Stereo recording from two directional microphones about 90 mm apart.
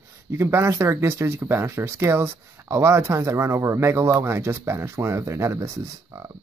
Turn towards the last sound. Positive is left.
turn(degrees=-30)  # may be behind; listen again after turning